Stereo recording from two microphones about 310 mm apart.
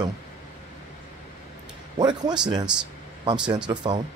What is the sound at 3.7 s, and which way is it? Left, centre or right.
Speech, centre.